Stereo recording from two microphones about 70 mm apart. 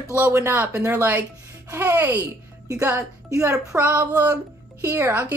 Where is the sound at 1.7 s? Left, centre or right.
Right.